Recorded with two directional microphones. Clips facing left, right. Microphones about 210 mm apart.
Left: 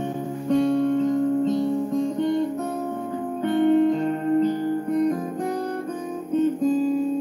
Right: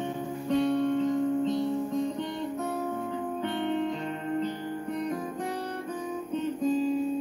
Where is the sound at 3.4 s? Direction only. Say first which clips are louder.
Left 13 dB; 45° left (ahead or behind).